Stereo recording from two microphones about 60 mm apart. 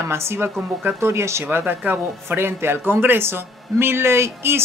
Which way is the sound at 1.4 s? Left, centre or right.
Right.